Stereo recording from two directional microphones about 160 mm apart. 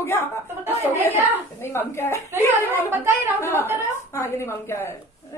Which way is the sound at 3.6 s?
15° right (ahead or behind).